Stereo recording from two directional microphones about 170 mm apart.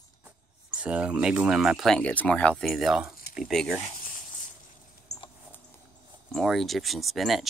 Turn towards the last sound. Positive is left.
turn(degrees=0)  # may be behind; listen again after turning